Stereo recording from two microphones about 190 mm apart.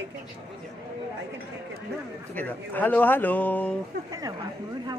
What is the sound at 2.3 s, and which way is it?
Speech, 10° left (ahead or behind).